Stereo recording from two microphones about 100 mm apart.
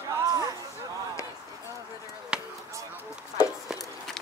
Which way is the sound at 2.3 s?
10° right (ahead or behind).